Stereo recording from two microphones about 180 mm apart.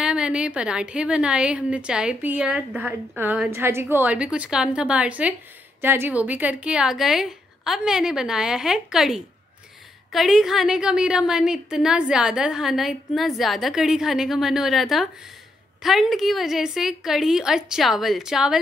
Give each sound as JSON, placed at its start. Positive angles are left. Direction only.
{"t": 0.0, "sound": "a woman's voice", "side_deg": -5}